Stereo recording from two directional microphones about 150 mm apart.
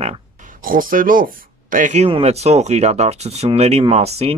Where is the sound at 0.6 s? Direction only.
65° right (ahead or behind).